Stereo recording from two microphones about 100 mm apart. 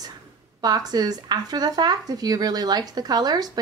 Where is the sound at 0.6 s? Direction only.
40° right (ahead or behind).